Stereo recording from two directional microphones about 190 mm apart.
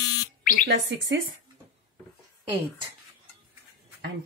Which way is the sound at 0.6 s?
65° right (ahead or behind).